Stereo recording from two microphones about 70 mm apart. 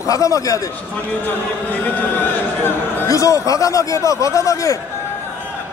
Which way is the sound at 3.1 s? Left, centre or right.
Left.